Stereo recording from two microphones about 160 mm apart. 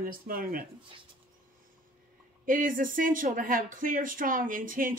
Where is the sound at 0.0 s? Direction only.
65° right (ahead or behind).